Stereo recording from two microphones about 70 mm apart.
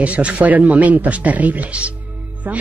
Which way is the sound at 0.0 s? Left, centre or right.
Centre.